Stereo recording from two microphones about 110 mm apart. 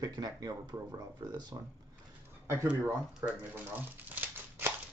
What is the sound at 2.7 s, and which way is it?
Speech, 15° right (ahead or behind).